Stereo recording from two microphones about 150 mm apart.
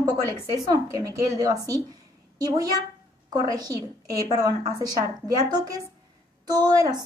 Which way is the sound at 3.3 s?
25° right (ahead or behind).